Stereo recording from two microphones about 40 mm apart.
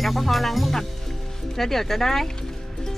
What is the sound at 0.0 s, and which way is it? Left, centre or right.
Speech, centre.